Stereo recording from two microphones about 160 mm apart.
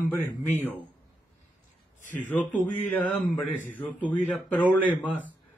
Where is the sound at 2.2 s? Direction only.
10° left (ahead or behind).